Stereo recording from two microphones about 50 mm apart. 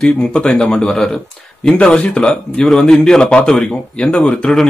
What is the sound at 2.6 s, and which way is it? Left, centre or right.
Speech, centre.